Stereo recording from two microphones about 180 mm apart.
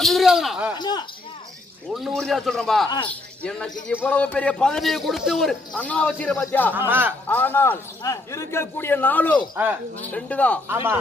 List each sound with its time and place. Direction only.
0.0 s a man's voice: centre (ahead or behind)
0.7 s speech: 25° left (ahead or behind)
2.0 s a man's voice: centre (ahead or behind)
6.7 s a man's voice: 10° right (ahead or behind)
7.2 s a man's voice: 10° left (ahead or behind)
10.7 s a man's voice: 15° right (ahead or behind)